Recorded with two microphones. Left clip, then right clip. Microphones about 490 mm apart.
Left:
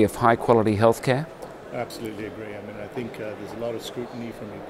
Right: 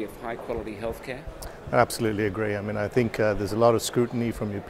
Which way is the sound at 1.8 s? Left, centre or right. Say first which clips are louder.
Right 9 dB; right.